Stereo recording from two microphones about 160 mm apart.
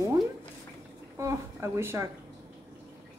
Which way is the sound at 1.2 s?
20° right (ahead or behind).